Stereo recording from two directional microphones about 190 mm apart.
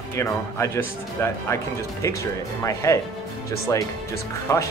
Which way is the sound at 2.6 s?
15° left (ahead or behind).